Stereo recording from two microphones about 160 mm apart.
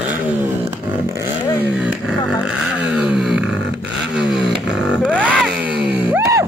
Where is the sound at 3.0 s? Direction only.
Centre (ahead or behind).